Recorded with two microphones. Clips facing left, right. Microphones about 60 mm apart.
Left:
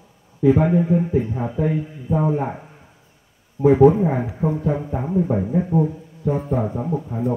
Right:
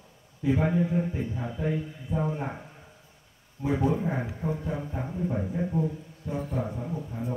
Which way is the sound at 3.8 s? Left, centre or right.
Left.